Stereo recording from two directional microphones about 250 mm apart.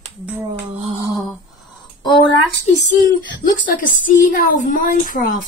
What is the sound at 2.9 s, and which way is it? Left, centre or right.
Speech, left.